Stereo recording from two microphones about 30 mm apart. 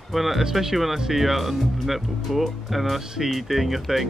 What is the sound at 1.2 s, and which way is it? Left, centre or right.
Speech, centre.